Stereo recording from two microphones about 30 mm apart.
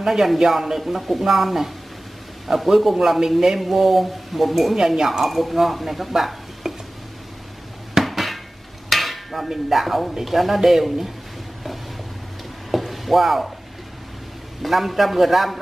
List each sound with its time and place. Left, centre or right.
0.0 s speech: centre
5.2 s speech: centre
8.0 s dishes: centre
10.2 s speech: centre
12.7 s a sound: centre
14.6 s speech: centre